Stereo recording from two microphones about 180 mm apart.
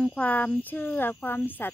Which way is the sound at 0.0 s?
5° left (ahead or behind).